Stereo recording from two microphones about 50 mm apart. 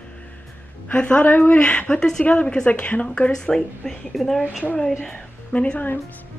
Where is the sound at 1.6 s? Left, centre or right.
Left.